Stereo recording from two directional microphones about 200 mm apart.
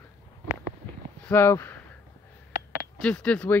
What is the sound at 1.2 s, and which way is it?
Speech, 10° left (ahead or behind).